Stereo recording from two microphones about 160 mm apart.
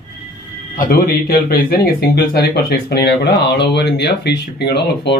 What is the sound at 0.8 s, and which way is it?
Speech, 70° left (ahead or behind).